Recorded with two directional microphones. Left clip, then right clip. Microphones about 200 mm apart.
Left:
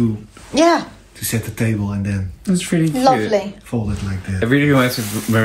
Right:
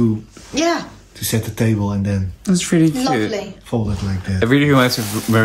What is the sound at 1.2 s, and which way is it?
Speech, 55° right (ahead or behind).